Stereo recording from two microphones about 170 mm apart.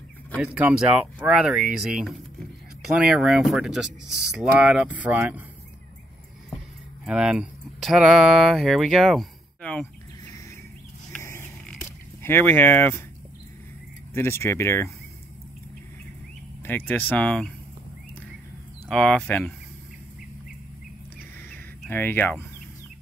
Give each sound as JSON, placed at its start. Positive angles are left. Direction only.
{"t": 0.4, "sound": "speech", "side_deg": -5}
{"t": 7.1, "sound": "speech", "side_deg": -5}
{"t": 12.2, "sound": "speech", "side_deg": 15}
{"t": 14.1, "sound": "speech", "side_deg": 15}
{"t": 16.6, "sound": "speech", "side_deg": 10}
{"t": 18.9, "sound": "speech", "side_deg": 5}
{"t": 21.4, "sound": "a sound", "side_deg": 15}